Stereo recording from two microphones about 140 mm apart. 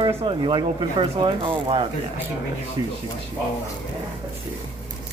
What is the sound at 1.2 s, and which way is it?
Speech, 40° right (ahead or behind).